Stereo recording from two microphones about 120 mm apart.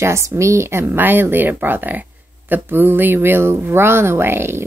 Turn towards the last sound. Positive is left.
turn(degrees=-20)  # may be behind; listen again after turning